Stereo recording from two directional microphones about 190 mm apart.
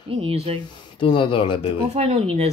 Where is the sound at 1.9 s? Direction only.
30° right (ahead or behind).